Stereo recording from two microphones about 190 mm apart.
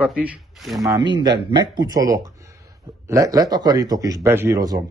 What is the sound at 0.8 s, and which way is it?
A man's voice, 20° right (ahead or behind).